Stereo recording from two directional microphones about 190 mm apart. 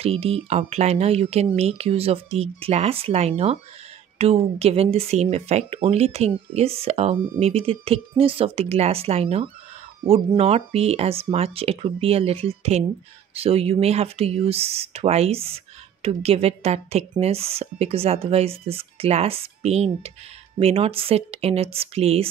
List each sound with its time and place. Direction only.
0.0 s speech: 30° right (ahead or behind)